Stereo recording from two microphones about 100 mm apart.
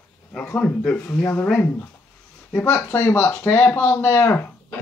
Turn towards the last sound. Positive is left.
turn(degrees=20)  # may be behind; listen again after turning